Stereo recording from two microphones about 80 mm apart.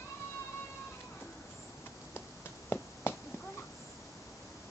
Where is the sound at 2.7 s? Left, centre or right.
Left.